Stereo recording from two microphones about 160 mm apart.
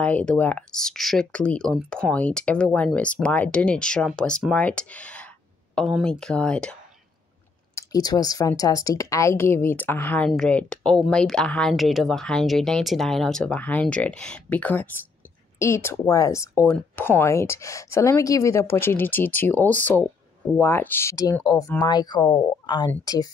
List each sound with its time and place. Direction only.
0.0 s speech: 5° left (ahead or behind)
7.7 s speech: 25° left (ahead or behind)